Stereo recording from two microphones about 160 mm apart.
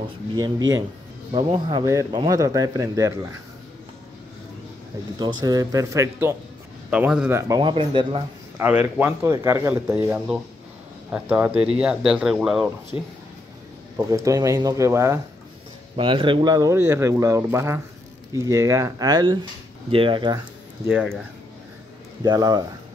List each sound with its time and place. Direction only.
0.4 s speech: 25° right (ahead or behind)
5.2 s speech: 25° right (ahead or behind)
6.9 s speech: 5° right (ahead or behind)
7.3 s speech: 25° right (ahead or behind)
8.5 s speech: 10° right (ahead or behind)
12.9 s speech: 20° right (ahead or behind)
16.0 s speech: 30° right (ahead or behind)
20.8 s speech: 10° right (ahead or behind)
22.2 s speech: 25° right (ahead or behind)